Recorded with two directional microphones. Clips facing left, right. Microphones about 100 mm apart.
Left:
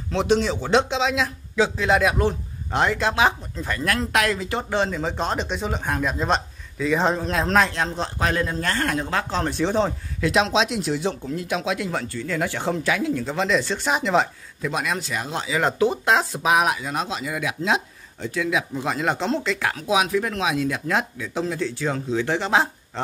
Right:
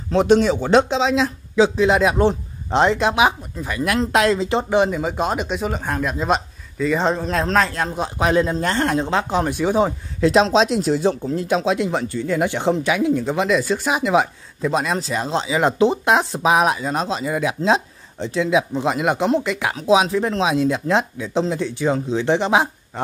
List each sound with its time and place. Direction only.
0.1 s speech: 45° right (ahead or behind); by 4.1 s 15° right (ahead or behind)
4.1 s speech: 25° right (ahead or behind); by 9.9 s 10° right (ahead or behind)
10.2 s speech: 35° right (ahead or behind); by 13.5 s 15° right (ahead or behind)
13.5 s speech: 5° right (ahead or behind)
14.6 s speech: 30° right (ahead or behind)
19.9 s speech: 30° right (ahead or behind)